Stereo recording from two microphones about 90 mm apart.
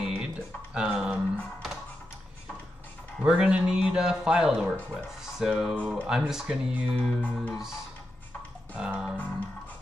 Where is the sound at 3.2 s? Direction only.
10° right (ahead or behind).